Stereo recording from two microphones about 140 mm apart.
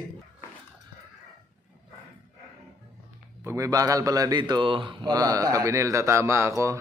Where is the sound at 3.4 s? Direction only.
25° right (ahead or behind).